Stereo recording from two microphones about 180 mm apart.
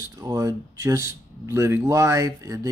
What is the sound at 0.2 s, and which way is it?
Speech, 20° right (ahead or behind).